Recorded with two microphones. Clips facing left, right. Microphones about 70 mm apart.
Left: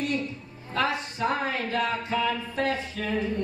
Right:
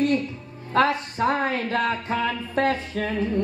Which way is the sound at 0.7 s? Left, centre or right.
Right.